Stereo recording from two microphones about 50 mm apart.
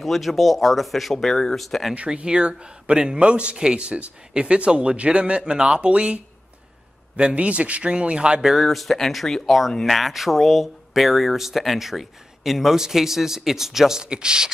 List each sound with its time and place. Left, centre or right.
0.0 s speech: centre
2.0 s speech: centre
8.5 s speech: centre